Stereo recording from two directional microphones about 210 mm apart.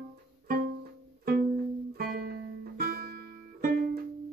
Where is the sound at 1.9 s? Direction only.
45° right (ahead or behind).